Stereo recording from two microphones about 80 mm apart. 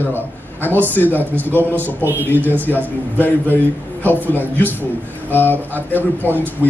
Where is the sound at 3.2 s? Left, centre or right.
Left.